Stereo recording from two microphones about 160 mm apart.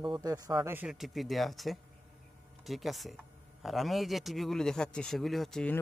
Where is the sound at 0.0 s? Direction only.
25° right (ahead or behind).